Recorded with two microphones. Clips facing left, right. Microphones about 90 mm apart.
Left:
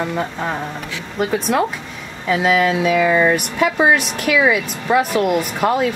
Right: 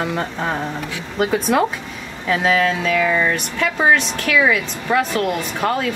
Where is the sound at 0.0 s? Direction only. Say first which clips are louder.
Even; centre (ahead or behind).